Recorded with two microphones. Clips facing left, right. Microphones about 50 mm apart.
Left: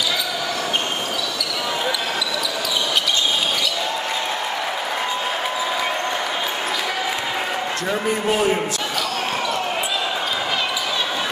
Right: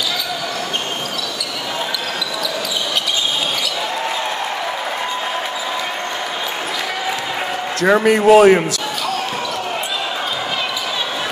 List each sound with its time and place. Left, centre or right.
7.8 s a man's voice: right